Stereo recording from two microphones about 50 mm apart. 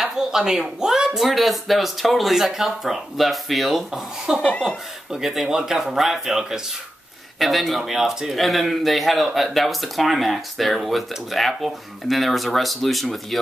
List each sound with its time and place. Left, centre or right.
0.0 s speech: centre
4.4 s speech: centre
5.1 s speech: centre